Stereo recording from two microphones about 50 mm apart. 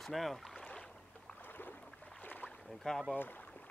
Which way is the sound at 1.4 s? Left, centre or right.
Left.